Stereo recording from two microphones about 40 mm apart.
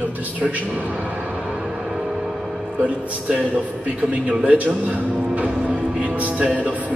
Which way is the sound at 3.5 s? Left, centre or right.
Right.